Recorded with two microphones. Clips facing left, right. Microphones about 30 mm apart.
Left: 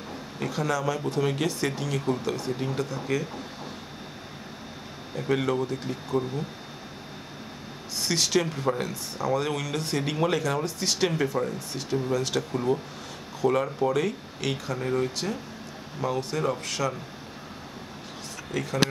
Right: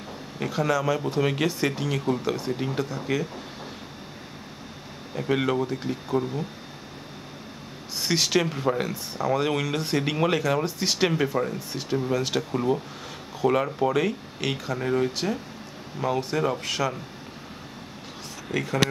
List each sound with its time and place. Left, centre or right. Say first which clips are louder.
0.4 s speech: right 3 dB; centre
5.1 s speech: right 1 dB; centre
8.0 s speech: right 2 dB; centre
18.5 s speech: right 3 dB; right